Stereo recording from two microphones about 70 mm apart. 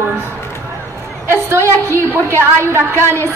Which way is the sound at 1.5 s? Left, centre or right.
Right.